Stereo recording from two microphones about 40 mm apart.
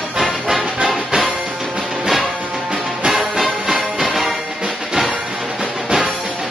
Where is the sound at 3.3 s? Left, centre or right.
Centre.